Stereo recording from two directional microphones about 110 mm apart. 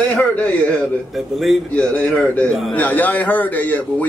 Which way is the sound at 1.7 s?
15° left (ahead or behind).